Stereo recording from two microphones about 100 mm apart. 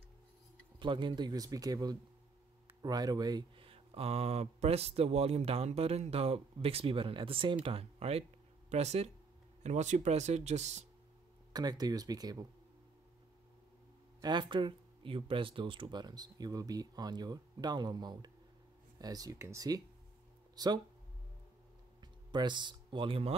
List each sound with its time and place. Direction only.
0.7 s speech: 50° right (ahead or behind)
3.5 s speech: 70° right (ahead or behind)
7.6 s speech: 80° right
10.3 s speech: 90° right
11.5 s speech: 40° right (ahead or behind)
14.2 s speech: 50° right (ahead or behind)
22.3 s speech: 50° right (ahead or behind)